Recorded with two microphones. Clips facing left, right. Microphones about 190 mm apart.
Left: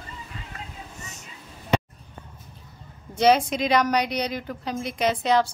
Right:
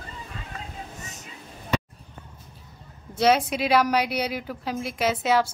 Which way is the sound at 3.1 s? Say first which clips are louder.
Left 2 dB; 5° right (ahead or behind).